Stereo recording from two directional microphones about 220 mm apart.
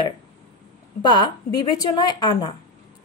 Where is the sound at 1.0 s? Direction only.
20° left (ahead or behind).